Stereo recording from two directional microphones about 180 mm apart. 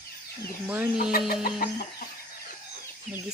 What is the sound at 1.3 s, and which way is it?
Chicken, 55° left (ahead or behind).